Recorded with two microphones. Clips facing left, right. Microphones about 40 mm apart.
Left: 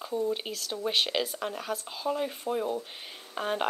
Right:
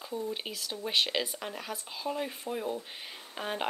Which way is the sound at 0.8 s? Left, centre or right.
Centre.